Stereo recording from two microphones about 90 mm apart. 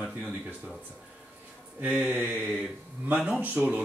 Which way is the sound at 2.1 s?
20° right (ahead or behind).